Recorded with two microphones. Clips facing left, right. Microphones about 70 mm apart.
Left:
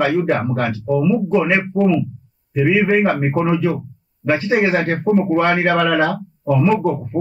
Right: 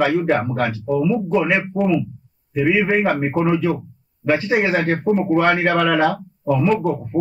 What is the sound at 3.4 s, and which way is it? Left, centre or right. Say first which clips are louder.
Speech: even; centre.